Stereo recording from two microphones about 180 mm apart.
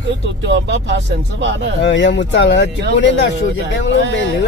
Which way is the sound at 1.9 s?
80° left.